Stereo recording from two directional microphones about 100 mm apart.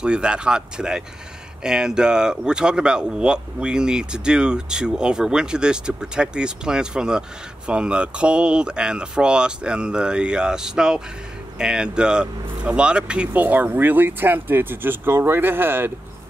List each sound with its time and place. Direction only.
0.0 s speech: 10° right (ahead or behind)